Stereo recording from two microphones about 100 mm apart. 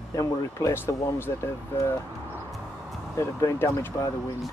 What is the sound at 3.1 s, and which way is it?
Speech, 25° left (ahead or behind).